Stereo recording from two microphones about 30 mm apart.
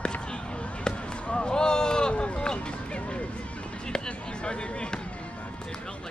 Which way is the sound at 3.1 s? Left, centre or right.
Left.